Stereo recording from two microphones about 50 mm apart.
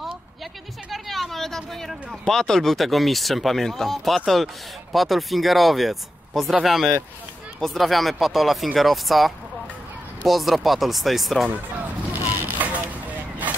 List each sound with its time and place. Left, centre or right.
0.8 s a sound: centre
2.2 s speech: centre
12.1 s vehicle: right
13.5 s crowd: right